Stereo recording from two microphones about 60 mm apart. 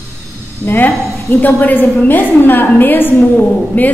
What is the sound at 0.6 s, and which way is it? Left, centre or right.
A woman's voice, left.